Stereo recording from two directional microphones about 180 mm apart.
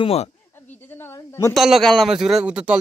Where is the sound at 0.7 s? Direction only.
10° left (ahead or behind).